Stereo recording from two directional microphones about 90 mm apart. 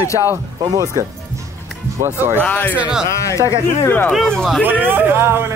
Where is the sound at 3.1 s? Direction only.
35° left (ahead or behind).